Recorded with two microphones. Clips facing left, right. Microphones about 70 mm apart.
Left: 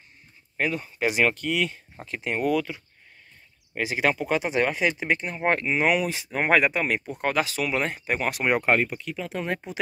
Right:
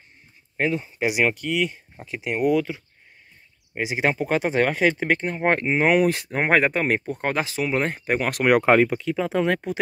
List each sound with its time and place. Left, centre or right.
0.6 s speech: right
1.4 s speech: centre
2.5 s speech: right
4.3 s speech: right
9.7 s speech: right